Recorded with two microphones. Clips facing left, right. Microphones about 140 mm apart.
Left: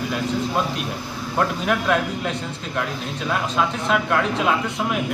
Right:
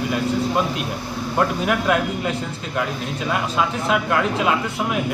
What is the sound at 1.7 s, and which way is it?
Speech, 5° right (ahead or behind).